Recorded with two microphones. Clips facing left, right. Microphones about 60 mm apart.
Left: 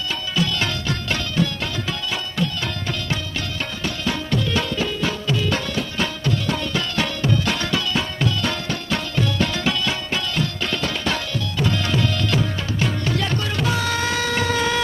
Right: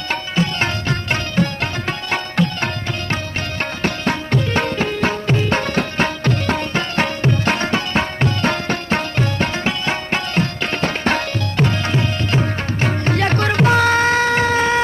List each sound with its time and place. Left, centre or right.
0.4 s music: right
3.8 s music: right